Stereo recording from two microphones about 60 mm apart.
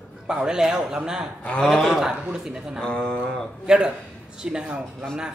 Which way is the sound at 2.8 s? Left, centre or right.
Centre.